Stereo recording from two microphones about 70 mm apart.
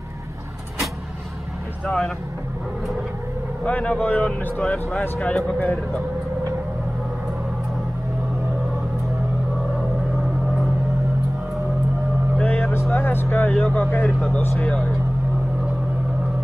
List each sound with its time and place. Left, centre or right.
1.9 s speech: centre
3.6 s speech: centre
12.4 s vehicle: left
12.9 s speech: left